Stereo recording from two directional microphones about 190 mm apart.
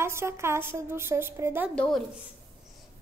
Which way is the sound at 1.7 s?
5° left (ahead or behind).